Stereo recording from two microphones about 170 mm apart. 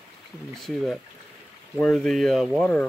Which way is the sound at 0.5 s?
Centre (ahead or behind).